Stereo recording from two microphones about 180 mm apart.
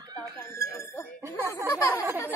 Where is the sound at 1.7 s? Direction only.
15° left (ahead or behind).